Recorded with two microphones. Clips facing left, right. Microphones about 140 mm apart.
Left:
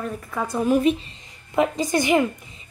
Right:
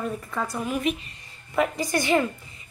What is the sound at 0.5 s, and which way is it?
Speech, 35° left (ahead or behind).